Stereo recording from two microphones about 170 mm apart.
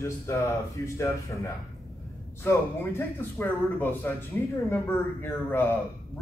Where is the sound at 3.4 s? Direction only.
15° left (ahead or behind).